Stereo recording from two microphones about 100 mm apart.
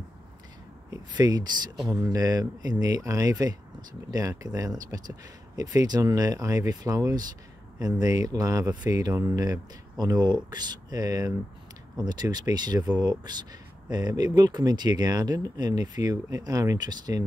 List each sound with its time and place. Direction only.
0.8 s speech: 40° right (ahead or behind)